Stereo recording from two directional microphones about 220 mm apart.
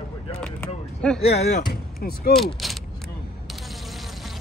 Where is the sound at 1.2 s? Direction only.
30° left (ahead or behind).